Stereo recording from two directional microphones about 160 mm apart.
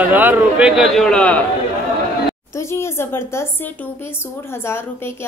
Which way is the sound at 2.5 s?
15° left (ahead or behind).